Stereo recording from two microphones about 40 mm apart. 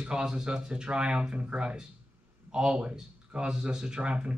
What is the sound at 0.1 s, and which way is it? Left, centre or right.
Speech, centre.